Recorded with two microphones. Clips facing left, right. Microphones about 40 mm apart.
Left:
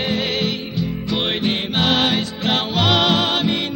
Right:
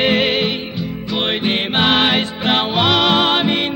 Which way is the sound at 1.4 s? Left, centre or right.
Right.